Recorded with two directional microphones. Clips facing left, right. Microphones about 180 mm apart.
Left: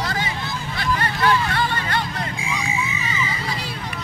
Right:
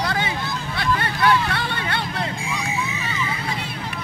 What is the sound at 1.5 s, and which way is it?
Music, 65° right (ahead or behind).